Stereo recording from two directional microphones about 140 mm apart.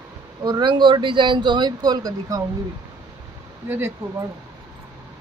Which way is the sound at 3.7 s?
15° right (ahead or behind).